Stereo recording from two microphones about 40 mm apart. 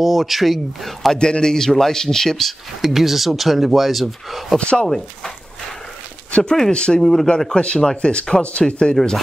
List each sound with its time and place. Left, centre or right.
0.0 s speech: centre
1.1 s a man's voice: centre
2.8 s speech: centre
4.6 s speech: left
4.8 s a man's voice: centre
6.7 s speech: left
7.0 s a man's voice: centre
8.4 s speech: left
8.9 s a man's voice: centre